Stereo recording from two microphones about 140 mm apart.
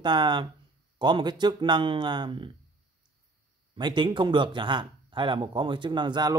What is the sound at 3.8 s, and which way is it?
Speech, 35° right (ahead or behind).